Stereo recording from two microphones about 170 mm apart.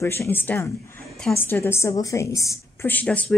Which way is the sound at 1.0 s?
5° left (ahead or behind).